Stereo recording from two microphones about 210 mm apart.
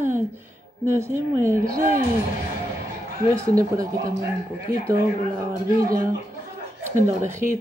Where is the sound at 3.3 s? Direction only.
15° right (ahead or behind).